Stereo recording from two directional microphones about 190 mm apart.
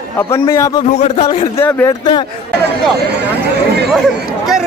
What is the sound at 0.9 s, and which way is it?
Speech, 35° left (ahead or behind).